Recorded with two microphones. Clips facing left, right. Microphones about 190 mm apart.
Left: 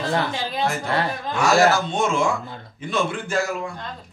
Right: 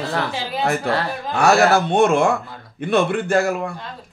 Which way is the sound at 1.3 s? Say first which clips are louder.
Right 3 dB; 60° right (ahead or behind).